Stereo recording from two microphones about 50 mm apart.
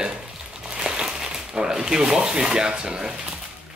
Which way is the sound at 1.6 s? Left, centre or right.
Centre.